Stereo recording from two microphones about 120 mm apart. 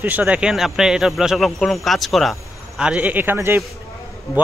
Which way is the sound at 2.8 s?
10° right (ahead or behind).